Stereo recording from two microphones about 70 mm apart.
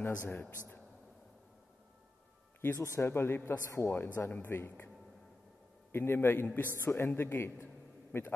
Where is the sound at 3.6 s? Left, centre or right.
Left.